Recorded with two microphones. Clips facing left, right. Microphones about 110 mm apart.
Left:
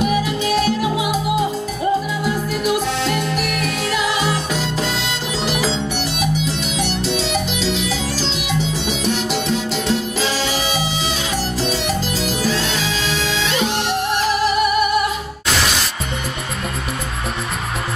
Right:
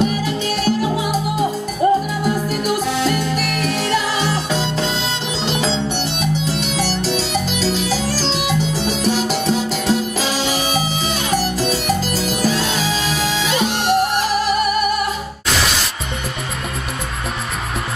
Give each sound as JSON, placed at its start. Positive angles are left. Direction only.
{"t": 0.0, "sound": "music", "side_deg": -35}
{"t": 1.8, "sound": "music", "side_deg": -50}
{"t": 3.4, "sound": "music", "side_deg": -35}
{"t": 6.7, "sound": "music", "side_deg": -40}
{"t": 13.0, "sound": "music", "side_deg": -10}